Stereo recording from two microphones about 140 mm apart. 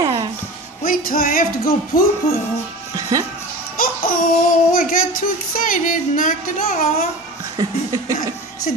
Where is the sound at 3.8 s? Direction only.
85° left.